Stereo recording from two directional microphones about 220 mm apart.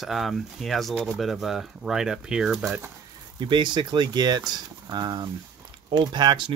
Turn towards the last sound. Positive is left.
turn(degrees=-20)  # may be behind; listen again after turning